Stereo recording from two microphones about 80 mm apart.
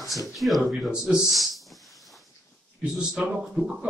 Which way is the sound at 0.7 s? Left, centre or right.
Centre.